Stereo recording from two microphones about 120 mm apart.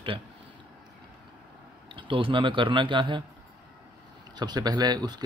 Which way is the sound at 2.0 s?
45° right (ahead or behind).